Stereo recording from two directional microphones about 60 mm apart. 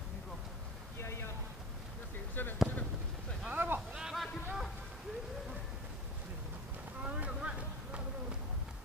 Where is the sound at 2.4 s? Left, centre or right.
Left.